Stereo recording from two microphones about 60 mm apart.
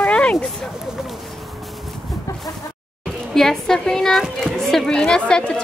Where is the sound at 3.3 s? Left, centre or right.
Centre.